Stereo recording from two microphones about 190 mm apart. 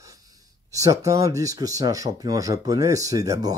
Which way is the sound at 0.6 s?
15° right (ahead or behind).